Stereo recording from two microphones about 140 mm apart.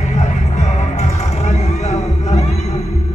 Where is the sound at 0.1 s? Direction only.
55° left (ahead or behind).